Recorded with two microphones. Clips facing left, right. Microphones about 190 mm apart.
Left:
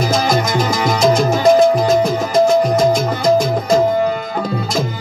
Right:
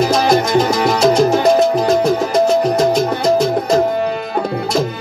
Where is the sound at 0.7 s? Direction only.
65° right (ahead or behind).